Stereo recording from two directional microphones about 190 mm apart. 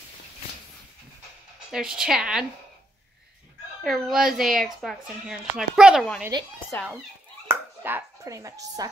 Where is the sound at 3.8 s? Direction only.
Centre (ahead or behind).